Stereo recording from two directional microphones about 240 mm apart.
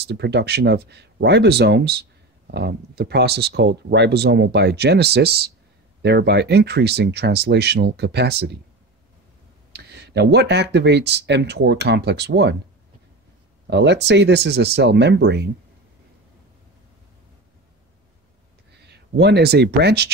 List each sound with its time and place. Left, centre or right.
0.0 s speech: right
9.7 s speech: right
13.7 s speech: right
18.9 s speech: right